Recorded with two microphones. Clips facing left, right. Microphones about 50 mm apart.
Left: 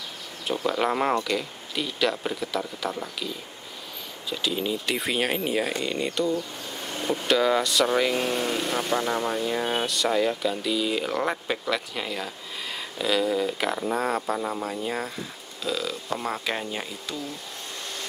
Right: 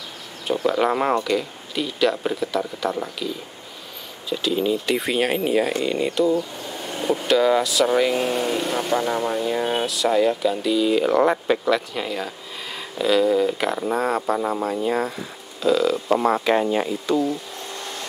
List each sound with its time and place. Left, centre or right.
0.5 s speech: centre